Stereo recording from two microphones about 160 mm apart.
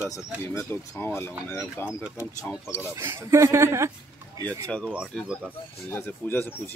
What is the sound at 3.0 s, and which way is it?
Speech, 20° right (ahead or behind).